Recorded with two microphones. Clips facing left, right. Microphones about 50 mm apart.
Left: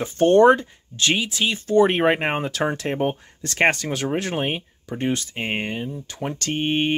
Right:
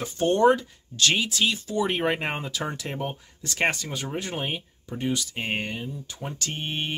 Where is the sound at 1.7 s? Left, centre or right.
Left.